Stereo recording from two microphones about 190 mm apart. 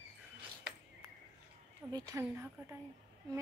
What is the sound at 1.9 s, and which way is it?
Speech, 20° right (ahead or behind).